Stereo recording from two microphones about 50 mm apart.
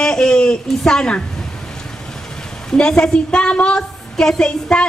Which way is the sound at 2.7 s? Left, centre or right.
Centre.